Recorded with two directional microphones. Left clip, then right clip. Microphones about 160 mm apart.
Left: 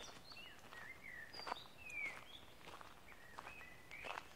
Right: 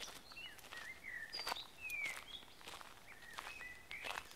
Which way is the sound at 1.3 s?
10° right (ahead or behind).